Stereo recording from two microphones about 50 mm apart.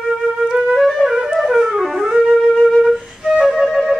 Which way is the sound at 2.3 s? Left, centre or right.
Centre.